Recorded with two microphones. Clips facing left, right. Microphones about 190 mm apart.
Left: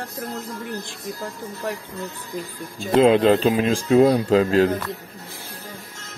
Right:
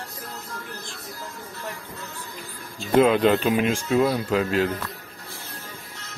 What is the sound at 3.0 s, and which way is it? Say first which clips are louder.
Speech: left 3 dB; 30° left (ahead or behind).